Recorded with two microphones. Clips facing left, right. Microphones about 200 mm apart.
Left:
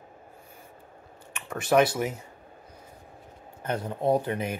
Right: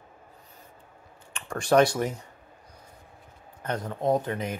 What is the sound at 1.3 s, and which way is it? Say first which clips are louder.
Speech: right 1 dB; 5° left (ahead or behind).